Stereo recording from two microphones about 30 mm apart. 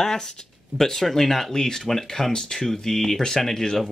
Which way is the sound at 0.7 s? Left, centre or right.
Centre.